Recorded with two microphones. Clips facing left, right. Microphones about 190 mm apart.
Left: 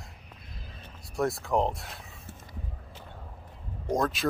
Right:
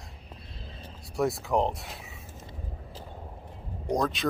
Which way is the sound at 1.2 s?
Centre (ahead or behind).